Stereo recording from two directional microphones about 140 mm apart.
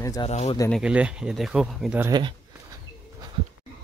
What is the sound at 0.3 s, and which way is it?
Speech, 50° left (ahead or behind).